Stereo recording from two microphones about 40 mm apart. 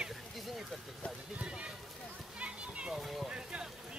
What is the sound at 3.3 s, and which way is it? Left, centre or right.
Speech, right.